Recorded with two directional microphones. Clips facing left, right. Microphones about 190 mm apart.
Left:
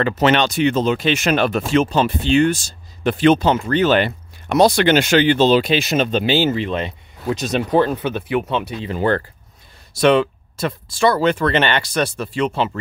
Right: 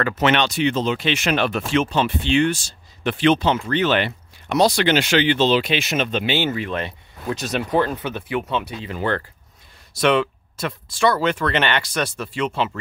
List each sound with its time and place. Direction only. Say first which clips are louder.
0.2 s speech: left 3 dB; 40° left (ahead or behind)